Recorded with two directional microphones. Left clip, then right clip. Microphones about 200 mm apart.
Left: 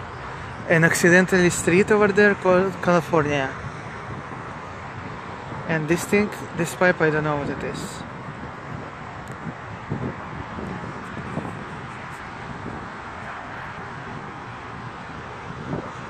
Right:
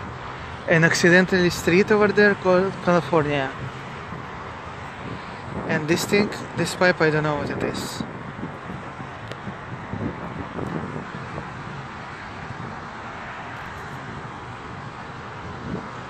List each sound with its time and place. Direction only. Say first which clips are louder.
0.7 s speech: even; centre (ahead or behind)
5.7 s speech: even; 5° left (ahead or behind)